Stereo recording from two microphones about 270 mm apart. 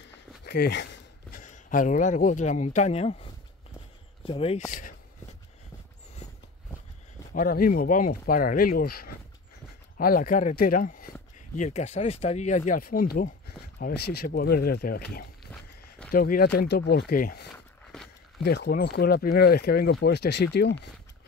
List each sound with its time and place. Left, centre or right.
0.5 s a sound: left
1.4 s speech: left
7.3 s speech: left